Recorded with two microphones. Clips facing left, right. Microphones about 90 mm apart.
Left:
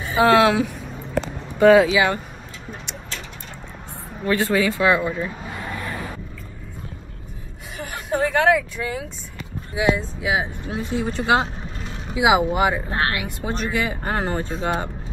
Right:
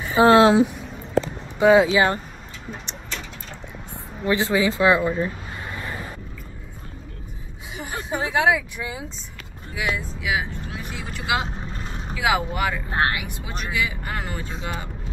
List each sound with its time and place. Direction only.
0.2 s speech: 25° right (ahead or behind)
1.9 s speech: 35° right (ahead or behind)
4.3 s speech: 20° right (ahead or behind)
7.8 s speech: 20° right (ahead or behind)
9.8 s speech: 25° left (ahead or behind)
12.2 s speech: 20° left (ahead or behind)
12.9 s speech: 15° right (ahead or behind)
13.4 s speech: 40° left (ahead or behind)